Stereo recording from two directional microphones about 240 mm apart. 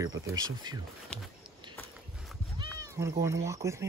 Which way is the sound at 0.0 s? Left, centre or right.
Centre.